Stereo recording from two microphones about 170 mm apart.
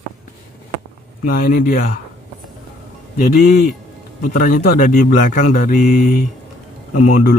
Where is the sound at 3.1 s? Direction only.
50° left (ahead or behind).